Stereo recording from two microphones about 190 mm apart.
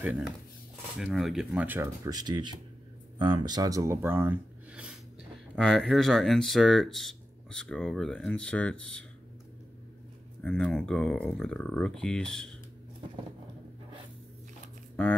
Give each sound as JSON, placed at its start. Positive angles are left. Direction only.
{"t": 0.0, "sound": "speech", "side_deg": -10}
{"t": 5.6, "sound": "speech", "side_deg": 0}
{"t": 10.4, "sound": "speech", "side_deg": 5}
{"t": 15.0, "sound": "speech", "side_deg": 5}